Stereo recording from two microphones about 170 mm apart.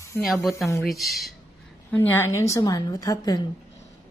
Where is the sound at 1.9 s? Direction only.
15° left (ahead or behind).